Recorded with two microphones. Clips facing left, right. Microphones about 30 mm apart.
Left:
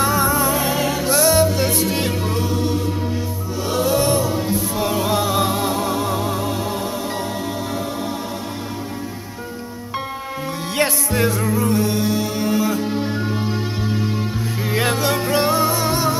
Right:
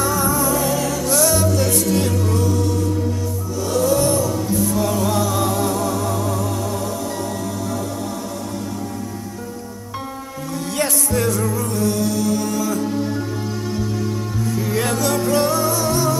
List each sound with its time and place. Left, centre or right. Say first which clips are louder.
0.0 s music: left 2 dB; left
10.8 s music: left 2 dB; left
14.7 s music: left 2 dB; left